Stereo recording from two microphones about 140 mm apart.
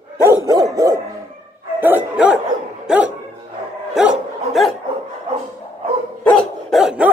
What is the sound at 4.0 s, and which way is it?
Dog, 5° right (ahead or behind).